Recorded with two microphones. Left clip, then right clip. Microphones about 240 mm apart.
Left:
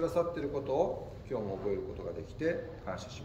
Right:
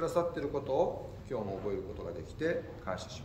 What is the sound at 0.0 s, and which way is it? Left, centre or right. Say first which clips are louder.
A man's voice: even; centre.